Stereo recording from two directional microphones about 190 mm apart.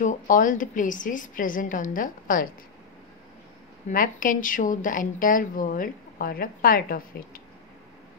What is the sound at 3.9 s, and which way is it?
Speech, 45° left (ahead or behind).